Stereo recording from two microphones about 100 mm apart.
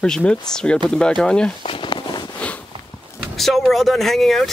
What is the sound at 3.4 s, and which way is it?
Speech, centre (ahead or behind).